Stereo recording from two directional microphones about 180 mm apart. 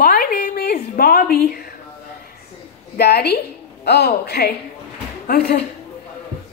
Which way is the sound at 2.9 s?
65° left (ahead or behind).